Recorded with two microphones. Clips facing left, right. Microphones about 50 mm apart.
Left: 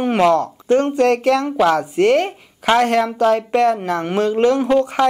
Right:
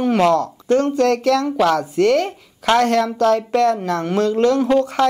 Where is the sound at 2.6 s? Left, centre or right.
Centre.